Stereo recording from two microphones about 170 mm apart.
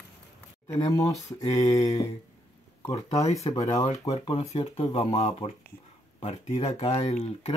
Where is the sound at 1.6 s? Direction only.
20° left (ahead or behind).